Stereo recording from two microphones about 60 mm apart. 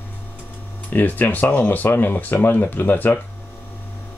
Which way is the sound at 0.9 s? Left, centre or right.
Left.